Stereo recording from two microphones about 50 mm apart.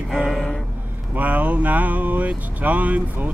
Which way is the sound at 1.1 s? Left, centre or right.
Right.